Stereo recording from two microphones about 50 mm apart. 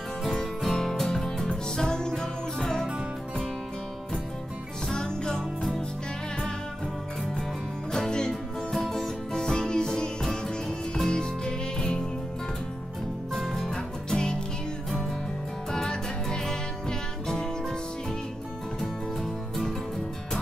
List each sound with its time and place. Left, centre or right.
0.3 s music: centre
4.8 s music: centre
7.9 s music: centre
13.3 s music: centre
15.7 s music: centre